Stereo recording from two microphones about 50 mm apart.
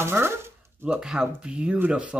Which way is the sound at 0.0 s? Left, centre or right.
Right.